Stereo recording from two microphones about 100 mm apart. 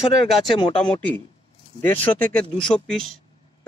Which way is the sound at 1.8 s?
20° left (ahead or behind).